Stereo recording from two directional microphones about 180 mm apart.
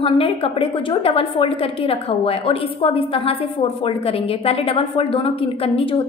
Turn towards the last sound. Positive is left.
turn(degrees=30)  # may be behind; listen again after turning